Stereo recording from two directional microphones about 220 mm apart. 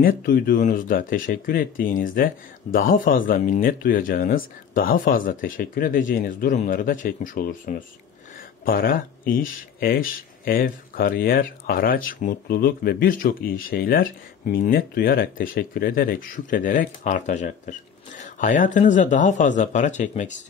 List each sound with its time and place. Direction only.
0.0 s speech: 40° left (ahead or behind)